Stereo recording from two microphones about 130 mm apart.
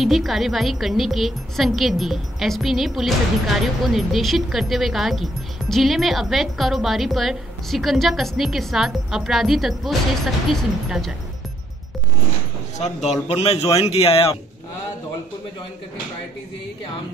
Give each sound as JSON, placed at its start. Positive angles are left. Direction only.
{"t": 0.0, "sound": "speech", "side_deg": 0}
{"t": 12.7, "sound": "speech", "side_deg": 60}